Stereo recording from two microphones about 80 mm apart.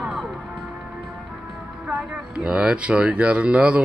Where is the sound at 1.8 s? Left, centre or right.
Centre.